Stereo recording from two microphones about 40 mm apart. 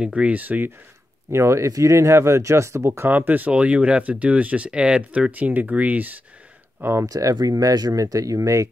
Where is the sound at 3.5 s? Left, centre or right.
Right.